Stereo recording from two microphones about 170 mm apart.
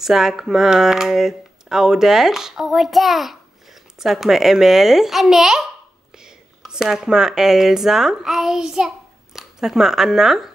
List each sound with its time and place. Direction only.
0.0 s speech: centre (ahead or behind)